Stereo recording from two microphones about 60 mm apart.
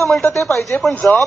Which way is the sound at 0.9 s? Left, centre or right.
Left.